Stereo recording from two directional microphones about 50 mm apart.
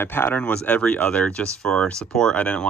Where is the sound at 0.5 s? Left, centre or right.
Left.